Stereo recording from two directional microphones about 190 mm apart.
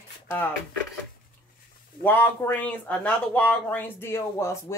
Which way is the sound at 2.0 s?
10° left (ahead or behind).